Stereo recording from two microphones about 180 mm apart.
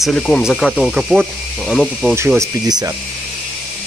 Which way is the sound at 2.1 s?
15° right (ahead or behind).